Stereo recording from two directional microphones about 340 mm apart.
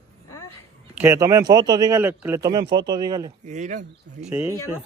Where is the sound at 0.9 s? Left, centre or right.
Centre.